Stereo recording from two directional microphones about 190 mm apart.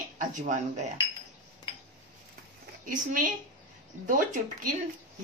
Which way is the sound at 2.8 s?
45° right (ahead or behind).